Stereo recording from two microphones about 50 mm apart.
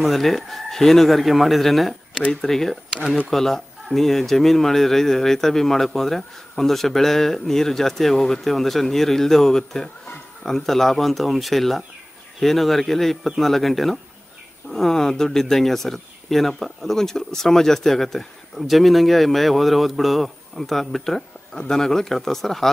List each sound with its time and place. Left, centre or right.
0.0 s speech: centre